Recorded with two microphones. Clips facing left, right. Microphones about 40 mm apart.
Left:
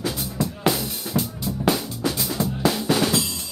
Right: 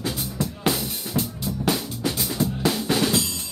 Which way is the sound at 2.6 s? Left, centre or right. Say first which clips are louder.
Left 3 dB; centre.